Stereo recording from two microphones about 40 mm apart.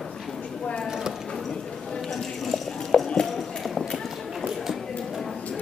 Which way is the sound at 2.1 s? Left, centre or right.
Centre.